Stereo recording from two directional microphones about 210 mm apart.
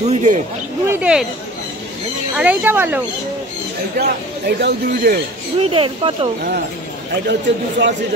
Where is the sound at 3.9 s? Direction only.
50° right (ahead or behind).